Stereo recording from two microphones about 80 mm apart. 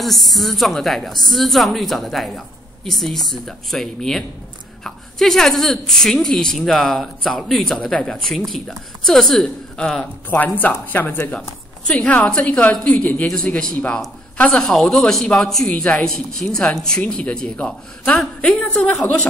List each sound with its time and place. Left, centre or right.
0.0 s a woman's voice: centre
10.3 s a woman's voice: left
14.7 s a woman's voice: centre